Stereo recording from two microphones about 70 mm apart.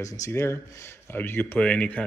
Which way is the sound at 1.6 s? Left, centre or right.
Centre.